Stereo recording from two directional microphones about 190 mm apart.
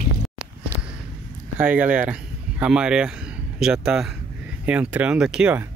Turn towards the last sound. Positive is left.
turn(degrees=-5)  # may be behind; listen again after turning